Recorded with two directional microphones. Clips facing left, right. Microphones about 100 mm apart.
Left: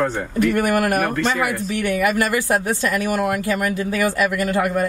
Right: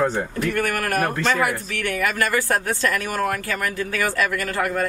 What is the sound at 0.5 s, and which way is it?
Speech, 20° left (ahead or behind).